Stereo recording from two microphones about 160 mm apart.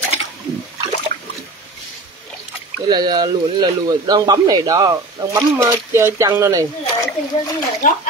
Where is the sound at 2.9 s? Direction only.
25° right (ahead or behind).